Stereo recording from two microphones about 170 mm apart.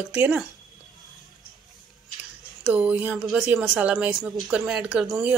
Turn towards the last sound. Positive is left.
turn(degrees=-5)  # may be behind; listen again after turning